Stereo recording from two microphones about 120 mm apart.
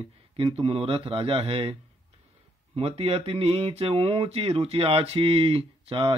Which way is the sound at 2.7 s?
55° right (ahead or behind).